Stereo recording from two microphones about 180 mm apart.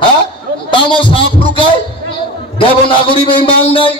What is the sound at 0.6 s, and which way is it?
A man's voice, 25° left (ahead or behind).